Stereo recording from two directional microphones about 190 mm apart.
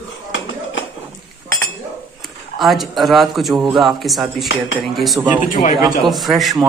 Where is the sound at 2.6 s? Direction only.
Centre (ahead or behind).